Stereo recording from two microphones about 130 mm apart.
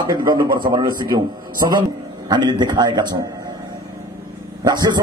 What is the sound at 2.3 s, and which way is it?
Speech, 35° right (ahead or behind).